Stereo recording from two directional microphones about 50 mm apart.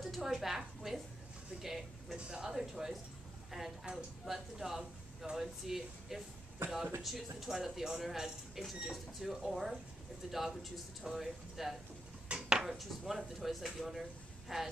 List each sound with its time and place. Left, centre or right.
0.0 s a sound: centre
2.1 s speech: centre
6.6 s speech: right
7.0 s a man's voice: centre
12.3 s dishes: centre
12.6 s a man's voice: centre